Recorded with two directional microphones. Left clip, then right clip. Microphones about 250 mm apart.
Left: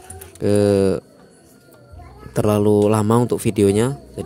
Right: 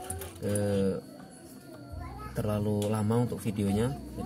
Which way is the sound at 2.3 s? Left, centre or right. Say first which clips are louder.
Left 16 dB; left.